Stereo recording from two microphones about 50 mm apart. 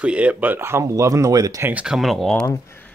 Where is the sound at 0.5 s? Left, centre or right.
Right.